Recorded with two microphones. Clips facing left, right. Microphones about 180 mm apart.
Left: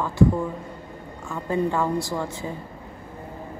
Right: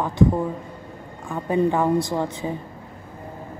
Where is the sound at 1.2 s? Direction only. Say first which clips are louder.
Right 4 dB; 15° right (ahead or behind).